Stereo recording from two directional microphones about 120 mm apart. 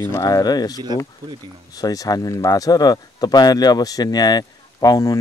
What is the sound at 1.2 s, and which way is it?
Speech, 45° right (ahead or behind).